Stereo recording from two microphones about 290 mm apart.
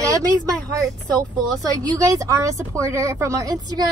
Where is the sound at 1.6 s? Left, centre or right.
Centre.